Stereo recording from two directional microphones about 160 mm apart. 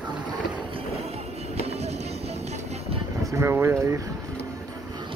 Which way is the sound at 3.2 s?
15° right (ahead or behind).